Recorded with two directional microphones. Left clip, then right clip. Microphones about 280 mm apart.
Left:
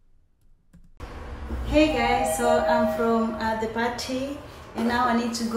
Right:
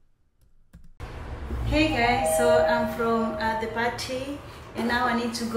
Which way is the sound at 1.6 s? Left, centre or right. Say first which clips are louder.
Left 2 dB; centre.